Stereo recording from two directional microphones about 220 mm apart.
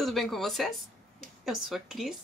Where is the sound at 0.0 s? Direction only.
Centre (ahead or behind).